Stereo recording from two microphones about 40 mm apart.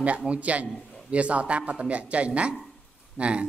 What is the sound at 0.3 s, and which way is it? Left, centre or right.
A man's voice, right.